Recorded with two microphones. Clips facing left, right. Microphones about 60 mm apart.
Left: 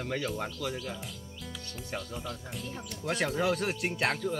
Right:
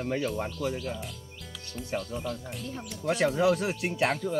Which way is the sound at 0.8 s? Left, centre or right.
Centre.